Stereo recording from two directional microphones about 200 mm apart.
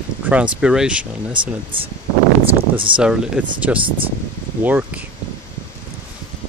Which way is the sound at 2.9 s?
5° right (ahead or behind).